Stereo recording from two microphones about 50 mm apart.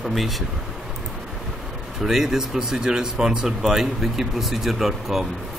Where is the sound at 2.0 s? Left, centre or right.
Centre.